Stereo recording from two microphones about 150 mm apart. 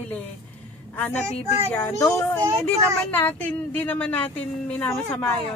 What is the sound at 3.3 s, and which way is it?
A woman's voice, 10° left (ahead or behind).